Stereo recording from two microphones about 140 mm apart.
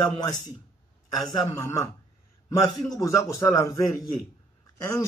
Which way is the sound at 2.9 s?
25° left (ahead or behind).